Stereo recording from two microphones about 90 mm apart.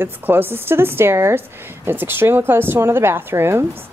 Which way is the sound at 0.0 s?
25° right (ahead or behind).